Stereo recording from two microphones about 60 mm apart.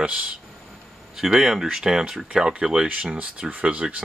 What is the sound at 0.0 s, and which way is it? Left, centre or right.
Speech, centre.